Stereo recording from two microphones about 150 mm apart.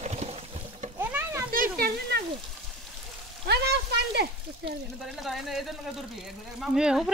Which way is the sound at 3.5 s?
90° right.